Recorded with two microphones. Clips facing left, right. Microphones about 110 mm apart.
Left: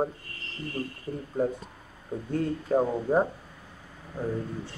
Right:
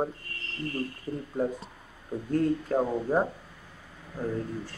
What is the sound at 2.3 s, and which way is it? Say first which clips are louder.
Speech: even; 5° left (ahead or behind).